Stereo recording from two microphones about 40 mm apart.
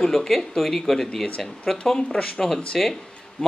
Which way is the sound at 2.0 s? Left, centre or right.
Left.